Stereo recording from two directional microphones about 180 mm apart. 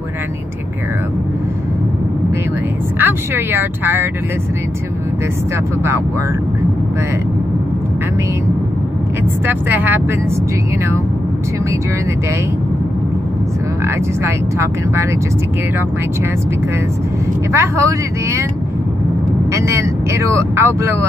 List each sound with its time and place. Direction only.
3.0 s speech: 10° right (ahead or behind)
9.5 s speech: 10° right (ahead or behind)
13.8 s speech: 15° right (ahead or behind)
17.5 s speech: 15° right (ahead or behind)
19.5 s speech: 15° right (ahead or behind)